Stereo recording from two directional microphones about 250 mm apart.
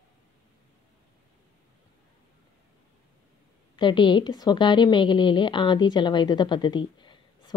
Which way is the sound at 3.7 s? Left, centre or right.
Centre.